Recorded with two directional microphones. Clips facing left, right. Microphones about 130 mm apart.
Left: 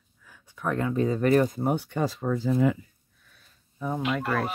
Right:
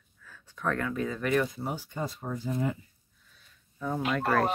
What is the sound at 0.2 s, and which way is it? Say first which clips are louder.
Speech: left 1 dB; 15° left (ahead or behind).